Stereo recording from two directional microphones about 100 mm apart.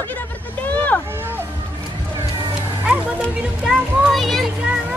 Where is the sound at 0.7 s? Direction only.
15° left (ahead or behind).